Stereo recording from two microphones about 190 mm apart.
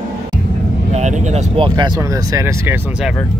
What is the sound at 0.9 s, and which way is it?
Speech, 35° right (ahead or behind).